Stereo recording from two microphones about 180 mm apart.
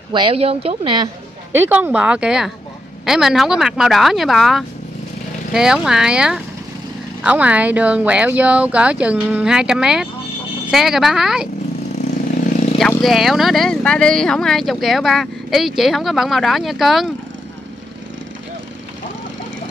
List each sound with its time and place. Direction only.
0.1 s speech: 30° right (ahead or behind)
1.5 s speech: 10° right (ahead or behind)
12.7 s speech: centre (ahead or behind)